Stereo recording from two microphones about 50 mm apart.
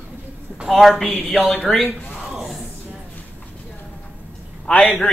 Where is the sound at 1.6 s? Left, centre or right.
Centre.